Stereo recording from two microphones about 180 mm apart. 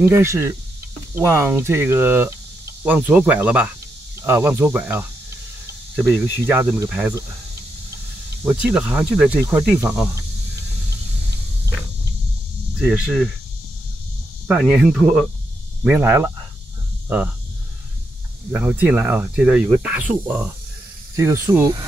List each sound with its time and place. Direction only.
0.0 s speech: 15° right (ahead or behind)
6.4 s speech: 15° right (ahead or behind)
8.5 s speech: 5° right (ahead or behind)
12.8 s speech: 5° right (ahead or behind)
14.5 s speech: 5° right (ahead or behind)
18.5 s speech: 10° right (ahead or behind)